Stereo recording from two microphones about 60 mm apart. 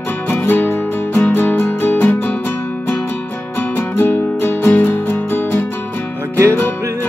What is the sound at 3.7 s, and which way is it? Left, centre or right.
Music, left.